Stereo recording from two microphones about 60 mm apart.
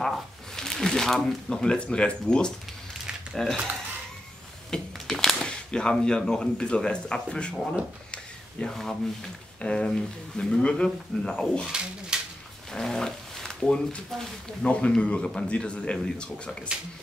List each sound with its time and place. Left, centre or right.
0.0 s speech: centre
4.6 s speech: centre
8.1 s a sound: centre
8.7 s speech: centre
9.6 s speech: centre
12.1 s a sound: centre
12.7 s speech: centre